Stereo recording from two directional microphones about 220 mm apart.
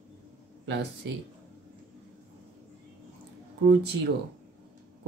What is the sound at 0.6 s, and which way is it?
Speech, 50° right (ahead or behind).